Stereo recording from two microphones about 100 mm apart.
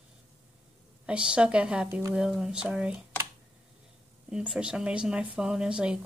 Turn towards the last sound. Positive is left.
turn(degrees=-10)  # may be behind; listen again after turning